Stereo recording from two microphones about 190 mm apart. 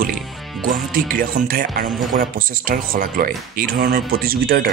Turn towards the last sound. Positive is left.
turn(degrees=-50)  # may be behind; listen again after turning